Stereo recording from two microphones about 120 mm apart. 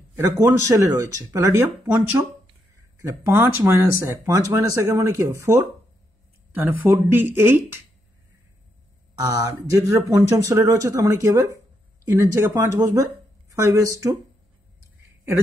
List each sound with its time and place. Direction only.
0.1 s speech: 20° right (ahead or behind)
9.2 s speech: 30° right (ahead or behind)